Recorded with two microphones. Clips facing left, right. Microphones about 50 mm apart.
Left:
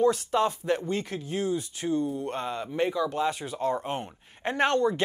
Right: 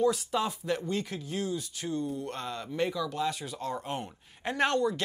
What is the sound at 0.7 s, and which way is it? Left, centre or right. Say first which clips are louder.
Speech: left 3 dB; centre.